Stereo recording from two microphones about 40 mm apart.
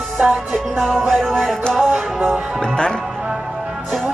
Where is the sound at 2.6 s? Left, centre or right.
Centre.